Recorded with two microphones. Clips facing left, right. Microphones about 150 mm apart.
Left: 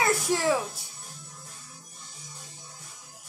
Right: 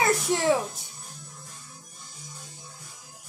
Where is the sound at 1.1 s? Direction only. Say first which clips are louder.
Right 1 dB; centre (ahead or behind).